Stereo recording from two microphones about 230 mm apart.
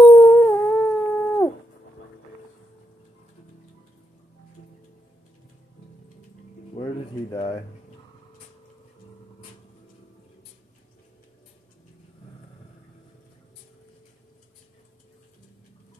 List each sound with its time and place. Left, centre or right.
0.0 s howl: centre
6.7 s music: left